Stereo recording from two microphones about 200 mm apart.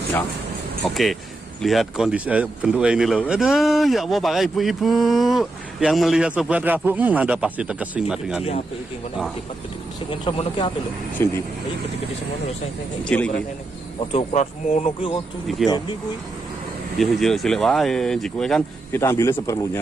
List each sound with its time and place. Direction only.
0.8 s a man's voice: centre (ahead or behind)
10.0 s speech: 25° left (ahead or behind)
11.2 s speech: 15° left (ahead or behind)
13.0 s speech: 5° left (ahead or behind)
14.1 s speech: 35° left (ahead or behind)
17.0 s a man's voice: centre (ahead or behind)
18.9 s speech: 15° left (ahead or behind)